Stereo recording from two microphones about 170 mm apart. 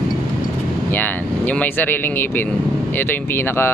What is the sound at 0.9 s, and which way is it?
Speech, 10° left (ahead or behind).